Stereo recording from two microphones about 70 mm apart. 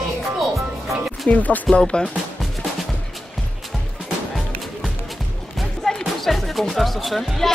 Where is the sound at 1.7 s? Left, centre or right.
Centre.